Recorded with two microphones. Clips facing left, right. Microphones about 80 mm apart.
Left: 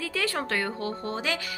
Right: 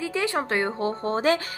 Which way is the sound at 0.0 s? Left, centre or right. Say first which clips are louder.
Right 4 dB; right.